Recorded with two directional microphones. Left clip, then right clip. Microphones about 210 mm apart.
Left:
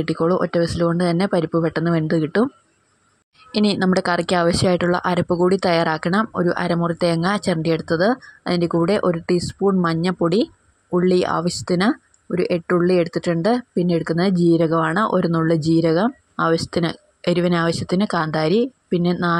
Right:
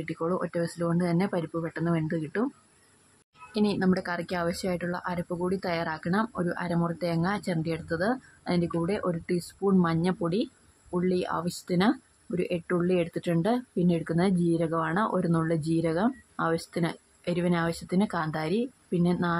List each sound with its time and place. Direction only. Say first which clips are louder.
0.0 s speech: left 11 dB; 25° left (ahead or behind)
3.5 s speech: left 8 dB; 30° left (ahead or behind)